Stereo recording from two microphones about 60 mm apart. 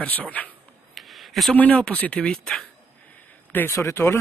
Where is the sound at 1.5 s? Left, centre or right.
Left.